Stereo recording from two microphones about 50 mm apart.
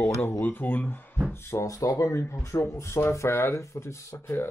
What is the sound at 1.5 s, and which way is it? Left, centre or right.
Speech, left.